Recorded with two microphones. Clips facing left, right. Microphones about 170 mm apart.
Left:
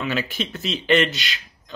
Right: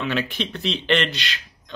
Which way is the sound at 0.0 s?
Centre (ahead or behind).